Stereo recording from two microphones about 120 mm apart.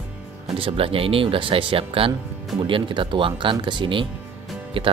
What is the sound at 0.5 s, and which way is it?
Speech, 50° right (ahead or behind).